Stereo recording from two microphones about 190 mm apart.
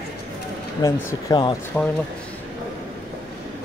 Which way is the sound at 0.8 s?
15° left (ahead or behind).